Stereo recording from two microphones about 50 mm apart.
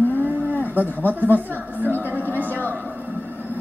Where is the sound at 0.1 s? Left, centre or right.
Right.